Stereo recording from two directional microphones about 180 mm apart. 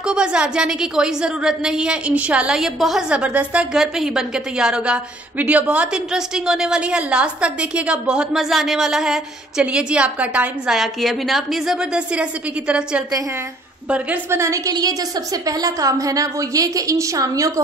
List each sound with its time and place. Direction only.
0.0 s a woman's voice: 5° right (ahead or behind)